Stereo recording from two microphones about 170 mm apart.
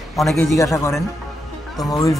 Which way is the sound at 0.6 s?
15° left (ahead or behind).